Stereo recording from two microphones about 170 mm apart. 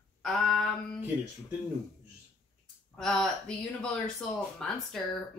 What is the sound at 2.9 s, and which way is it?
Speech, 5° left (ahead or behind).